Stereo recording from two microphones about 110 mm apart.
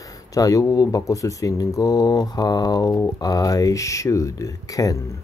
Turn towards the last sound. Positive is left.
turn(degrees=30)  # may be behind; listen again after turning